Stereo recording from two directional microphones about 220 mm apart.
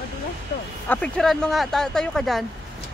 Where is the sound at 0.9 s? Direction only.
5° left (ahead or behind).